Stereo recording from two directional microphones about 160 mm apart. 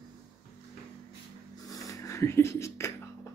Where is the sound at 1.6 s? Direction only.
20° left (ahead or behind).